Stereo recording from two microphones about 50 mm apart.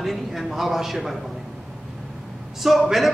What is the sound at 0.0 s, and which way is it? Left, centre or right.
A man's voice, centre.